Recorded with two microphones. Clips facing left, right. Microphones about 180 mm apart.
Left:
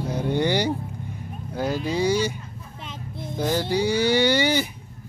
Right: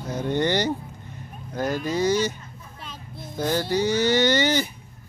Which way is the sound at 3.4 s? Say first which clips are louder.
Even; 10° left (ahead or behind).